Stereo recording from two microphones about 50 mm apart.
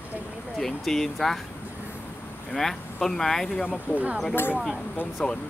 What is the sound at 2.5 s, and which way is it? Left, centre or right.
Speech, centre.